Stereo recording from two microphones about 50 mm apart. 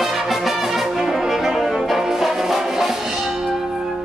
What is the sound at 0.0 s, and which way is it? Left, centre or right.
Brass instrument, centre.